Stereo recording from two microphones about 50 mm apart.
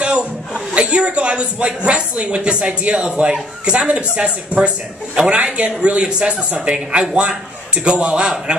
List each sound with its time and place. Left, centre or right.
0.0 s chuckle: right
0.7 s speech: right